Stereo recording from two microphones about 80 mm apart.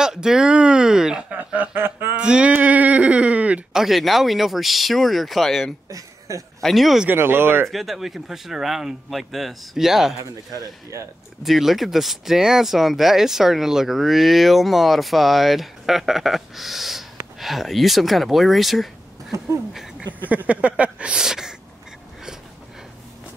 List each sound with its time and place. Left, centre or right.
0.0 s speech: centre
1.3 s chuckle: centre
2.1 s female singing: centre
2.5 s a sound: centre
3.7 s speech: centre
5.9 s a sound: right
6.6 s speech: centre
7.1 s chuckle: right
7.6 s speech: centre
10.6 s speech: right
11.4 s speech: centre
20.2 s speech: centre